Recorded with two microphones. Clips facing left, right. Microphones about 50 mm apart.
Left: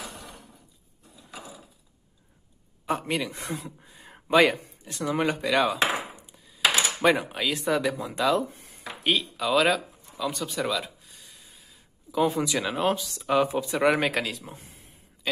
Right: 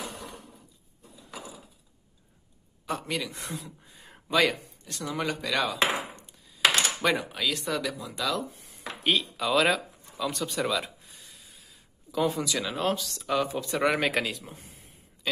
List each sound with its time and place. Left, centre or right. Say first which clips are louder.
2.9 s speech: left 4 dB; left
3.8 s a sound: left 3 dB; centre
4.3 s speech: left 4 dB; left
6.1 s a sound: left 1 dB; centre
6.4 s cutlery: even; centre
7.0 s speech: left 4 dB; centre; by 8.7 s left
9.0 s a sound: left 1 dB; centre
12.5 s speech: left 3 dB; centre
13.8 s speech: left 2 dB; centre